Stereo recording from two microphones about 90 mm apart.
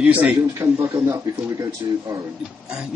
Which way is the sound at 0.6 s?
30° right (ahead or behind).